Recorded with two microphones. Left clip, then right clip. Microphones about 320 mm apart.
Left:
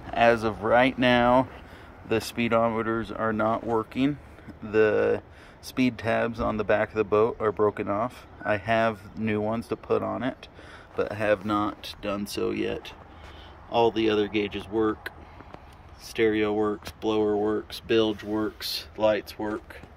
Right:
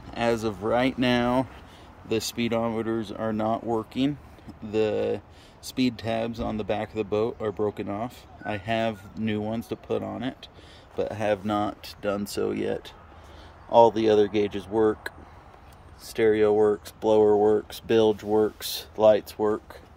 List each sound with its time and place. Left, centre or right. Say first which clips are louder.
0.1 s speech: left 5 dB; centre